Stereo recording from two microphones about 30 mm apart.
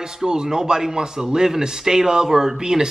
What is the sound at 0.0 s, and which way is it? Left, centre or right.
A man's voice, right.